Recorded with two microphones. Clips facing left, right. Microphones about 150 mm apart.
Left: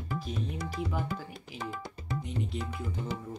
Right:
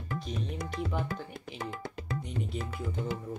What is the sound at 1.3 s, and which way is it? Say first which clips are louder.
Speech: right 1 dB; 50° right (ahead or behind).